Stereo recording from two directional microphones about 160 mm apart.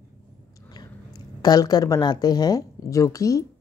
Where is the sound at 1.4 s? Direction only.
25° left (ahead or behind).